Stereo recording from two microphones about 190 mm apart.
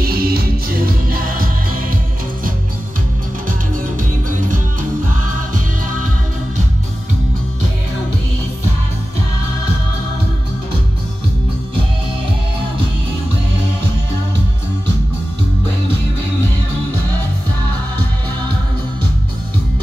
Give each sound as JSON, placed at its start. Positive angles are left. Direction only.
{"t": 0.0, "sound": "music", "side_deg": -50}